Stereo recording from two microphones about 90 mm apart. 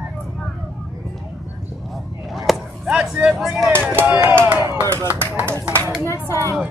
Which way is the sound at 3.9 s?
20° right (ahead or behind).